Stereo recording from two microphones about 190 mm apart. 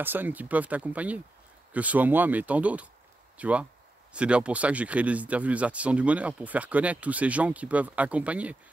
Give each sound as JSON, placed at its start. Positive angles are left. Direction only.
{"t": 0.0, "sound": "speech", "side_deg": -10}